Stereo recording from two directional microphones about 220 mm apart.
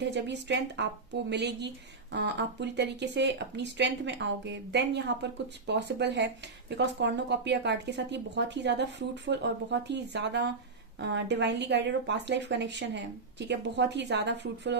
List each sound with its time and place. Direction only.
0.0 s speech: 50° right (ahead or behind)